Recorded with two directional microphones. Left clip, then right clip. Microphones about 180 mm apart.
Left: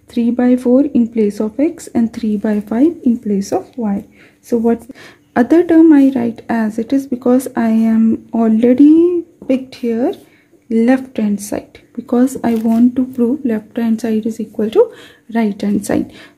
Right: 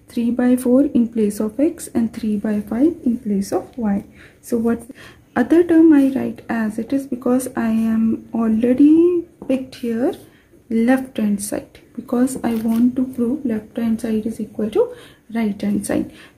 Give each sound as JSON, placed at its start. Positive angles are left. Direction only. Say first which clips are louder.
{"t": 0.1, "sound": "speech", "louder": "left 4 dB", "side_deg": 25}
{"t": 4.5, "sound": "speech", "louder": "left 5 dB", "side_deg": 20}
{"t": 5.3, "sound": "speech", "louder": "left 4 dB", "side_deg": 30}